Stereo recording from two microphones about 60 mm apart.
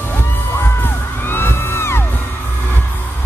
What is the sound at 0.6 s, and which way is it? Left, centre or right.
Music, left.